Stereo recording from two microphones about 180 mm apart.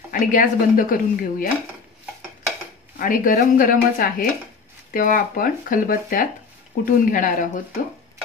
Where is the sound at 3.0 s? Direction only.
50° left (ahead or behind).